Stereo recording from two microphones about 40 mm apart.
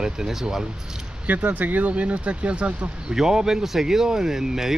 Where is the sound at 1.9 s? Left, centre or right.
Right.